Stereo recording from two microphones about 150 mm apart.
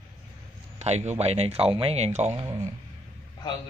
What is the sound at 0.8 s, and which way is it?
Speech, 45° right (ahead or behind).